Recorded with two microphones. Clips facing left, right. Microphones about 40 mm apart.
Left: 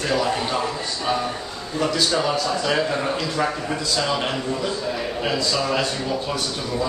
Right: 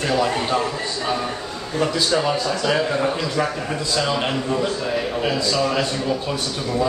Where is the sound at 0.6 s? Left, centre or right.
Centre.